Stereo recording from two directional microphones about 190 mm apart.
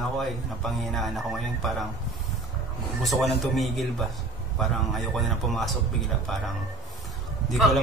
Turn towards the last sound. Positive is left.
turn(degrees=0)  # may be behind; listen again after turning